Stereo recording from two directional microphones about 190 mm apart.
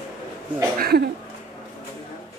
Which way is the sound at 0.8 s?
55° right (ahead or behind).